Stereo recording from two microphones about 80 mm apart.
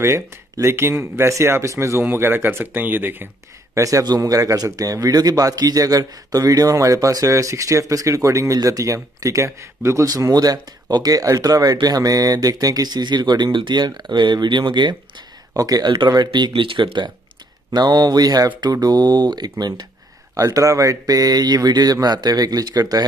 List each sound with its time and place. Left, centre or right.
0.0 s speech: right
3.7 s a man's voice: right
10.0 s speech: right
15.5 s a man's voice: right
16.3 s speech: right
17.7 s speech: right
20.3 s a man's voice: right